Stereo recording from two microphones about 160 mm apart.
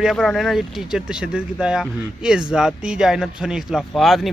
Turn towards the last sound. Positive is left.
turn(degrees=0)  # may be behind; listen again after turning